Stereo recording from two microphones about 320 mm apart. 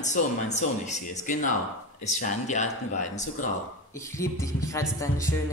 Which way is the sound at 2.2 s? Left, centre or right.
Left.